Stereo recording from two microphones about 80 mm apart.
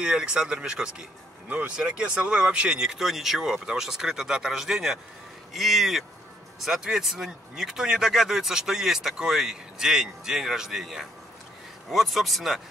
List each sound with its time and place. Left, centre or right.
0.0 s speech: centre